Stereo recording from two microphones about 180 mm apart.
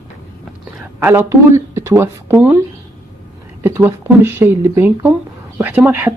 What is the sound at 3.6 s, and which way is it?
Speech, 15° right (ahead or behind).